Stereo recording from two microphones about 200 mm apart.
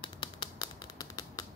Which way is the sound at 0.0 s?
25° left (ahead or behind).